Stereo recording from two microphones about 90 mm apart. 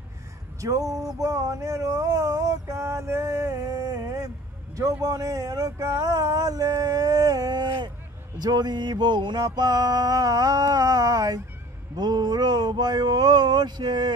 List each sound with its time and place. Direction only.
0.6 s speech: 40° right (ahead or behind)
1.2 s a sound: 35° right (ahead or behind)
4.7 s speech: 40° right (ahead or behind)
8.4 s music: 50° right (ahead or behind)